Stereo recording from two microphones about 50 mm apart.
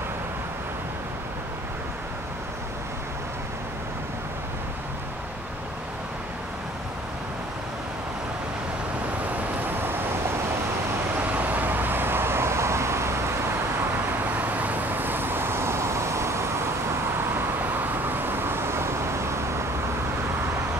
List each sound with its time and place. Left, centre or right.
9.7 s vehicle: right
11.1 s vehicle: right
14.0 s vehicle: right
17.3 s vehicle: right